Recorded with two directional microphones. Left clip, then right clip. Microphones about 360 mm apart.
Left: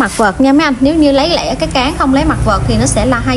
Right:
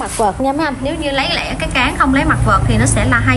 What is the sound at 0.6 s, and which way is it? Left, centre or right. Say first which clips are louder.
A woman's voice: left 8 dB; centre.